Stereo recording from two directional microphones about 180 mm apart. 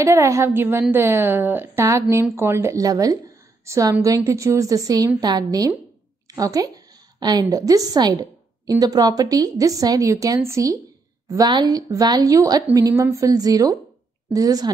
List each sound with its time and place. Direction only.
0.0 s a woman's voice: 15° right (ahead or behind)